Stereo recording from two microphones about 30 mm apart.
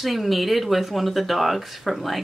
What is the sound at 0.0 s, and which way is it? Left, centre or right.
Speech, centre.